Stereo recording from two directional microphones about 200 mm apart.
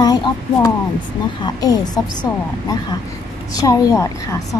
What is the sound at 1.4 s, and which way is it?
A woman's voice, 20° left (ahead or behind).